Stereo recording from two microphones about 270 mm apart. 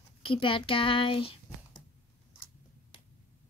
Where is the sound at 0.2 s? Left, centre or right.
Centre.